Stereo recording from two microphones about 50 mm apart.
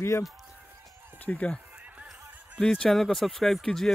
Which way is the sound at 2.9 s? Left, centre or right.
Centre.